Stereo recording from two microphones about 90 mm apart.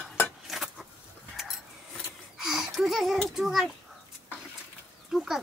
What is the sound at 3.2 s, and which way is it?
Speech, centre (ahead or behind).